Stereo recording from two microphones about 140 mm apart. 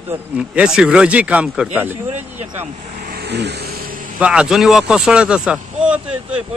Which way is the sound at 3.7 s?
90° right.